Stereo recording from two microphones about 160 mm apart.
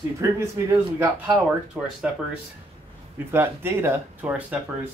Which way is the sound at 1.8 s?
10° right (ahead or behind).